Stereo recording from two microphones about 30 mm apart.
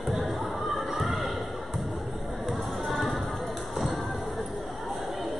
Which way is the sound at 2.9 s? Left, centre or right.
Centre.